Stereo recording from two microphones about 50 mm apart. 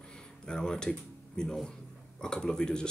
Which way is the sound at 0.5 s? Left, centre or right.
Centre.